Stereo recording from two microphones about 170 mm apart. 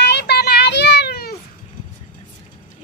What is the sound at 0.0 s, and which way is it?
Children playing, 75° left (ahead or behind).